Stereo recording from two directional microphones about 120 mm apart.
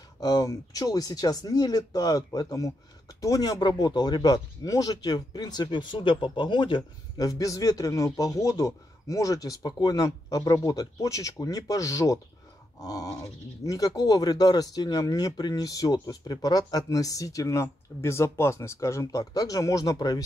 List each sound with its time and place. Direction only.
0.2 s speech: 35° left (ahead or behind)